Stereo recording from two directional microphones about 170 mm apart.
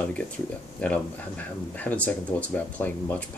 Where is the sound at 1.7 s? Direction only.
10° left (ahead or behind).